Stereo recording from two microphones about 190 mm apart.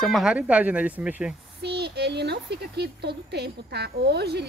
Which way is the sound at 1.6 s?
60° right (ahead or behind).